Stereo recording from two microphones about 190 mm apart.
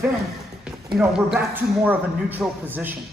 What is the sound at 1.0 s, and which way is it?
Speech, 5° right (ahead or behind).